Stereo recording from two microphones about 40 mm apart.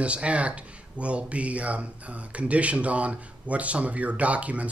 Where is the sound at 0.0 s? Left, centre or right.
Right.